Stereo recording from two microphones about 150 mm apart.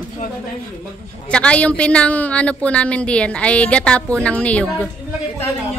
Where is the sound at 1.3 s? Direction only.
10° left (ahead or behind).